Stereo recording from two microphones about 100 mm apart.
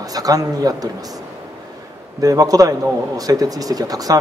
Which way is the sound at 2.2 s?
35° right (ahead or behind).